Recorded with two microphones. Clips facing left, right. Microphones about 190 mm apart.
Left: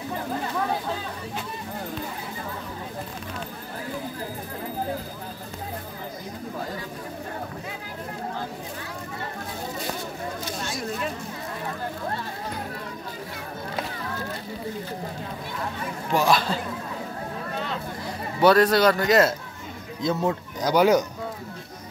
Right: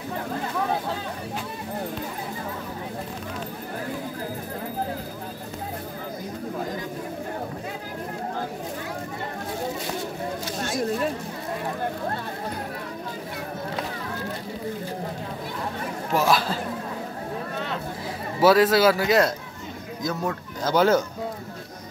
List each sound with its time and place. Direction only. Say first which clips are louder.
10.6 s a sound: right 7 dB; 50° right (ahead or behind)
16.1 s chatter: even; centre (ahead or behind)
18.4 s a man's voice: even; 5° right (ahead or behind)
20.0 s speech: left 4 dB; 25° left (ahead or behind)
20.6 s speech: left 1 dB; 15° left (ahead or behind)